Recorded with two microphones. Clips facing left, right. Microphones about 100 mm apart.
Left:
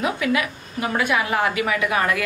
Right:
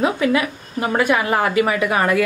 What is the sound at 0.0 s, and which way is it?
A woman's voice, 35° right (ahead or behind).